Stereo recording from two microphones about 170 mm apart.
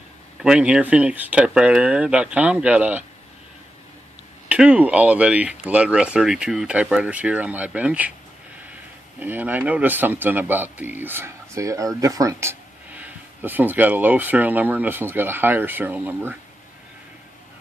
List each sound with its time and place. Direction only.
0.4 s speech: 5° right (ahead or behind)
4.5 s speech: 5° right (ahead or behind)
9.2 s speech: 10° right (ahead or behind)